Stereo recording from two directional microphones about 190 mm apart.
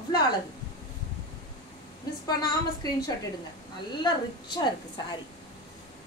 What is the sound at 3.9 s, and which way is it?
Speech, 25° left (ahead or behind).